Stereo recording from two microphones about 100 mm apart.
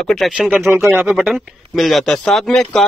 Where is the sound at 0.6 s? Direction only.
25° right (ahead or behind).